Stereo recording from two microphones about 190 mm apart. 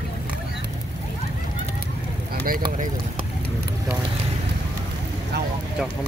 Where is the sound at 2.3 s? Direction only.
50° right (ahead or behind).